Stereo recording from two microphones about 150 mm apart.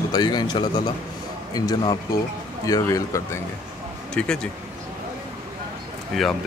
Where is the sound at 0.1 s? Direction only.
30° left (ahead or behind).